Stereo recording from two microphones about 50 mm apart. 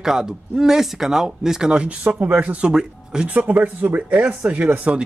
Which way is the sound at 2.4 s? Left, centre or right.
Centre.